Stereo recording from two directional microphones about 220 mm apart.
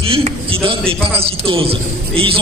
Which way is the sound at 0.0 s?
25° right (ahead or behind).